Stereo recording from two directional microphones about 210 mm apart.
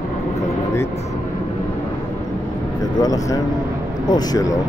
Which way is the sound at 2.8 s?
20° left (ahead or behind).